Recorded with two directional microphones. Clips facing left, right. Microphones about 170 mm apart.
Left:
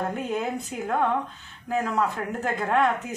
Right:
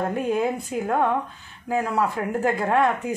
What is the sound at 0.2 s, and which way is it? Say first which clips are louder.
Speech: right 5 dB; 10° right (ahead or behind).